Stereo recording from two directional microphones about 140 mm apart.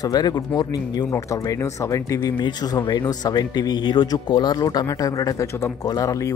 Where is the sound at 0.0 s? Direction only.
30° left (ahead or behind).